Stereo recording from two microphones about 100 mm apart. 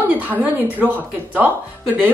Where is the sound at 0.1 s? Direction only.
15° right (ahead or behind).